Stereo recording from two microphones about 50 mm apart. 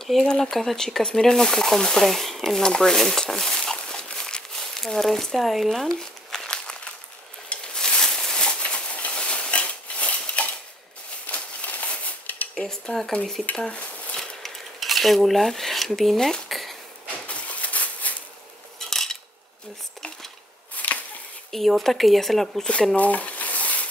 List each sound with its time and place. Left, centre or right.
0.0 s speech: centre
4.7 s speech: centre
5.9 s crumpling: centre
7.4 s a sound: centre
12.5 s speech: centre
13.5 s speech: left
14.1 s cutlery: centre
17.3 s a sound: left
18.9 s cutlery: centre
20.7 s chop: left
21.5 s speech: centre
22.9 s a sound: left